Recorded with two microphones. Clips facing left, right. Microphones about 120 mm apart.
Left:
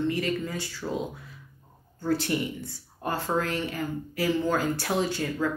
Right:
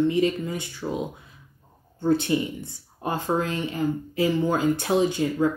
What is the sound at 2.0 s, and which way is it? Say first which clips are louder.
Speech: right 5 dB; 20° right (ahead or behind).